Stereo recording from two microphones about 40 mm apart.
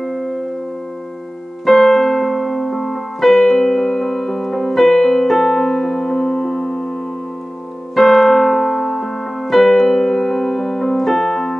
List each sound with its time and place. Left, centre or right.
0.0 s music: centre
1.7 s keyboard: centre
7.9 s keyboard: centre